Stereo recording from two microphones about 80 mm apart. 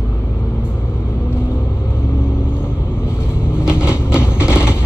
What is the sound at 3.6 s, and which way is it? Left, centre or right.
Vehicle, centre.